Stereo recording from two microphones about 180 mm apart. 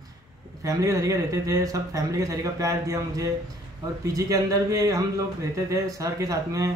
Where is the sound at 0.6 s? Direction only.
20° right (ahead or behind).